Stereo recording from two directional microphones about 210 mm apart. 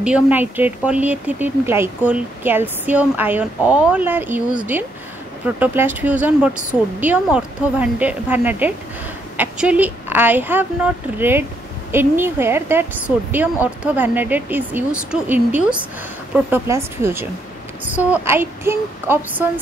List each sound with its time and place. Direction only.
0.0 s speech: 5° right (ahead or behind)
5.6 s speech: 10° right (ahead or behind)